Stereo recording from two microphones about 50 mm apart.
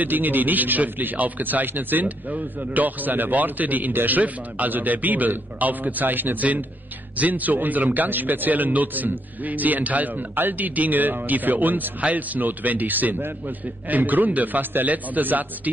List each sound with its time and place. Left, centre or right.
0.0 s a man's voice: right